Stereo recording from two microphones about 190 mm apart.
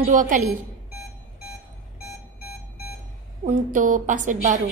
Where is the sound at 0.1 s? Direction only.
45° right (ahead or behind).